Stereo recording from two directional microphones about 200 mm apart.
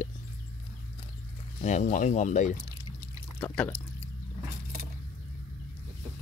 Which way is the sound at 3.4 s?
5° left (ahead or behind).